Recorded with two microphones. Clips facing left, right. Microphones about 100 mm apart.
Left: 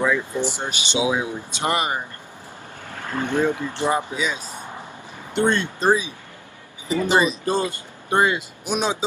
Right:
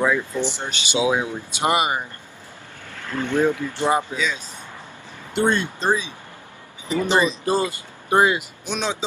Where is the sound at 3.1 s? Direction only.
20° left (ahead or behind).